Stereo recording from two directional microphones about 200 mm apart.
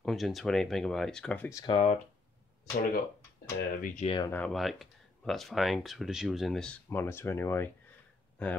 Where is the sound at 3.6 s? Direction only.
40° left (ahead or behind).